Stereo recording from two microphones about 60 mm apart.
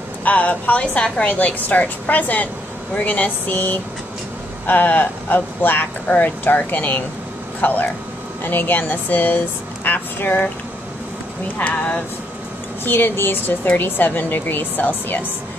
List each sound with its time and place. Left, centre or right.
0.2 s a woman's voice: left
11.5 s a woman's voice: left
12.8 s speech: left